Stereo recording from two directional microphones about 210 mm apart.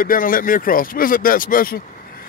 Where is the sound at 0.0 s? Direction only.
40° left (ahead or behind).